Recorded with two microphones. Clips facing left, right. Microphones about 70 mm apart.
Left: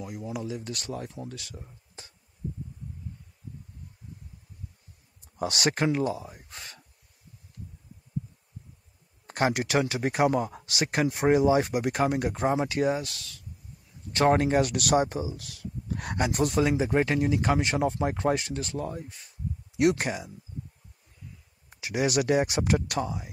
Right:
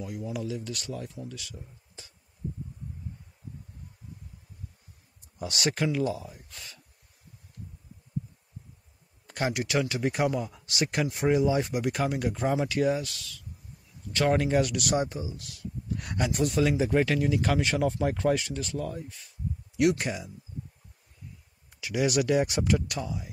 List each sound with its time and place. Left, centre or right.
0.0 s speech: left
0.5 s speech: left
5.4 s speech: left
9.3 s speech: left
10.8 s speech: left
15.4 s speech: left
16.3 s speech: left
16.6 s speech: left
21.6 s speech: left